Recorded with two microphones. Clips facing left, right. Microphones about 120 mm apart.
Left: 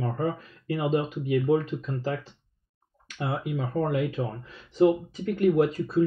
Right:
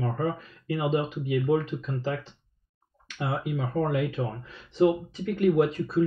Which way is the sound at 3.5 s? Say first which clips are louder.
Even; 35° left (ahead or behind).